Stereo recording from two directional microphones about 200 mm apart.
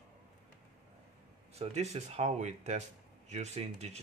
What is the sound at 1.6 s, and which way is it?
Speech, 35° right (ahead or behind).